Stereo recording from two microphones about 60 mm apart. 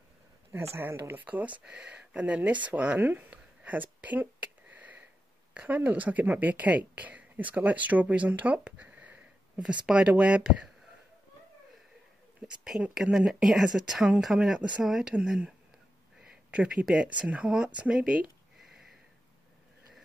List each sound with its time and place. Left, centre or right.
0.5 s speech: right
1.2 s speech: right
3.0 s a sound: right
5.5 s speech: right
12.9 s speech: centre
16.4 s speech: centre
17.7 s a sound: centre